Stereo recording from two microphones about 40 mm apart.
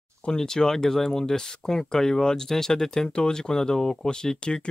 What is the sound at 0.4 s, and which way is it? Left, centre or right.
Speech, centre.